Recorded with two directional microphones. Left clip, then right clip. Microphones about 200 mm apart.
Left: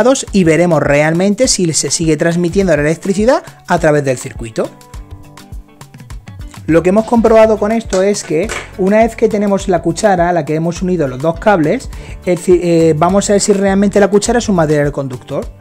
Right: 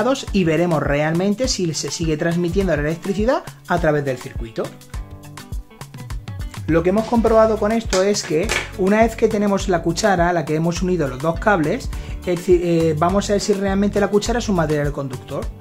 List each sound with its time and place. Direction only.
0.0 s speech: 40° left (ahead or behind)
6.7 s speech: 45° left (ahead or behind)